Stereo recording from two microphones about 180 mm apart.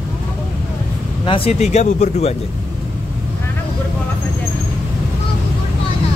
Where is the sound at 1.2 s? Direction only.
30° left (ahead or behind).